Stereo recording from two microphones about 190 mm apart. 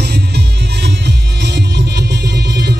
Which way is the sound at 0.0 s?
60° right (ahead or behind).